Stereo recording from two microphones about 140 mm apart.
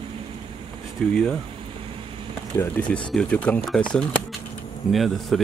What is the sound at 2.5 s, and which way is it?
Speech, 15° left (ahead or behind).